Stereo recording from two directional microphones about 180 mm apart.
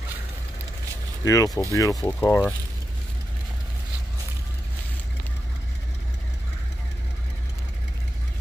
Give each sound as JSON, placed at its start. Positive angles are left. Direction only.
{"t": 1.2, "sound": "speech", "side_deg": 20}